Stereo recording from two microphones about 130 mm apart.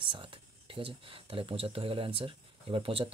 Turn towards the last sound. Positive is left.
turn(degrees=-45)  # may be behind; listen again after turning